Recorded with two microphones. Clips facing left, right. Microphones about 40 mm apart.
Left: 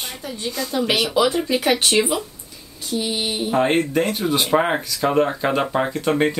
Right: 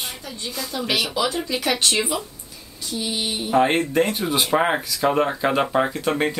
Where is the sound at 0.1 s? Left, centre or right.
Centre.